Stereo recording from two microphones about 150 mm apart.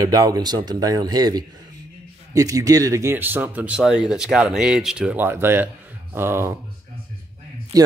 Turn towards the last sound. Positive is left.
turn(degrees=-25)  # may be behind; listen again after turning